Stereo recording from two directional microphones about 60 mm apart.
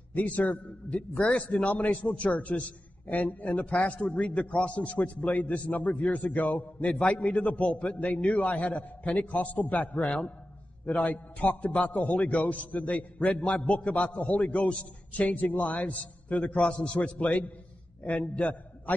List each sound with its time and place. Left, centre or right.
0.1 s a man's voice: left